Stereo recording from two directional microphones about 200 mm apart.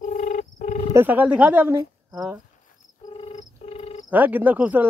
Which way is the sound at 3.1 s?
30° left (ahead or behind).